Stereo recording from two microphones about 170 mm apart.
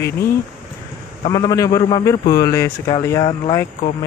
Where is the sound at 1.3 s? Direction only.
20° left (ahead or behind).